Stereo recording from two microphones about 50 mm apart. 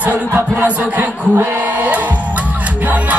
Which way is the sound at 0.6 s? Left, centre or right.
Right.